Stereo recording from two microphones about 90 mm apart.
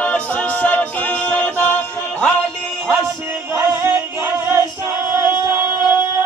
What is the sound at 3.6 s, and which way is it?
Music, 35° right (ahead or behind).